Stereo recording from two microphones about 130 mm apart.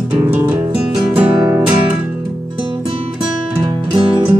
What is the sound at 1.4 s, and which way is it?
Music, 20° right (ahead or behind).